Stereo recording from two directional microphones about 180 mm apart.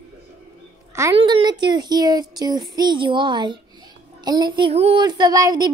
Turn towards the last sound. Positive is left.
turn(degrees=-20)  # may be behind; listen again after turning